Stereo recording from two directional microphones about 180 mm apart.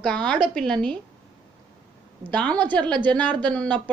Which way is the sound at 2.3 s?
5° left (ahead or behind).